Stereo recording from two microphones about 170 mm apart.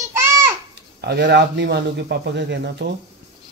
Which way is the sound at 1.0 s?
80° right.